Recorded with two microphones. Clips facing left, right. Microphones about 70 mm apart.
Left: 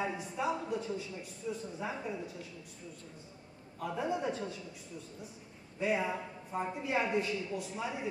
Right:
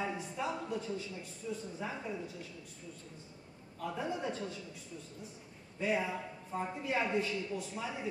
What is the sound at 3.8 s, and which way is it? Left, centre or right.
Speech, centre.